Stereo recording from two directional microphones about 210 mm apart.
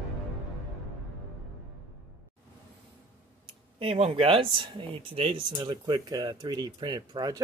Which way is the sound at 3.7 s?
25° right (ahead or behind).